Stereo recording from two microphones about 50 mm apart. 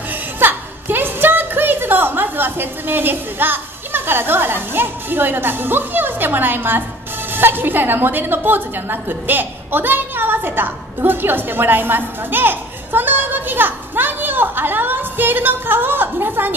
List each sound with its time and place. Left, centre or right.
0.1 s music: right
7.3 s a woman's voice: right